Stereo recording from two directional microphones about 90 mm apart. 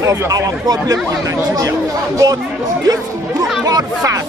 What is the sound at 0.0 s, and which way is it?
Speech, 35° right (ahead or behind).